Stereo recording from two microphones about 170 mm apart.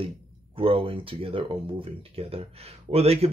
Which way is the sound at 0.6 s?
30° right (ahead or behind).